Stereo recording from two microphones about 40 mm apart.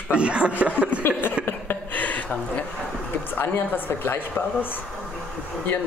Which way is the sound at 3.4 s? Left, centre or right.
Left.